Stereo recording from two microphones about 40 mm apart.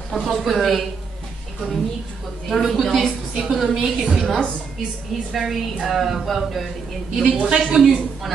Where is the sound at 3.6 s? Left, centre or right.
Centre.